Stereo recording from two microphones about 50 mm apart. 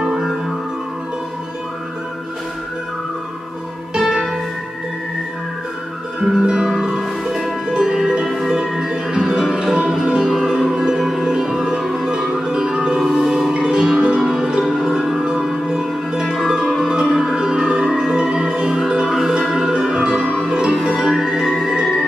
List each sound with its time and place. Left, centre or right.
4.0 s music: centre
6.4 s music: centre
14.6 s music: centre